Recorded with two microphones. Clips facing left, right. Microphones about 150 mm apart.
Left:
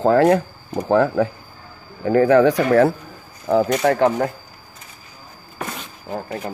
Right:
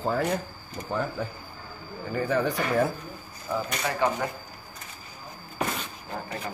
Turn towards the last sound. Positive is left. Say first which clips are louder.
# left 7 dB
turn(degrees=50)  # may be behind; listen again after turning